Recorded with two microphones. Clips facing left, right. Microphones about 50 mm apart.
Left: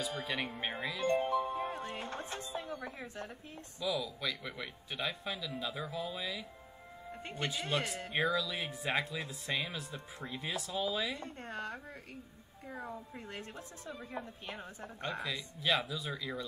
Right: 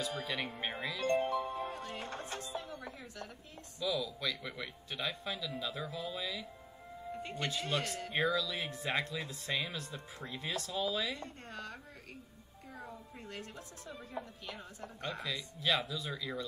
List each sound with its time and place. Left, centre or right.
0.0 s speech: centre
1.7 s music: left
2.0 s chopping: centre
3.8 s speech: centre
7.4 s speech: centre
8.1 s speech: centre
11.1 s a woman's voice: left
15.1 s speech: centre